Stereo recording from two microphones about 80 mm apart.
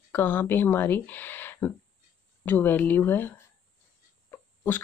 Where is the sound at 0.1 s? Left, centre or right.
Left.